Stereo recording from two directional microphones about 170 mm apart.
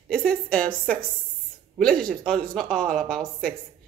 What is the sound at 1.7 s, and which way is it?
Speech, 5° left (ahead or behind).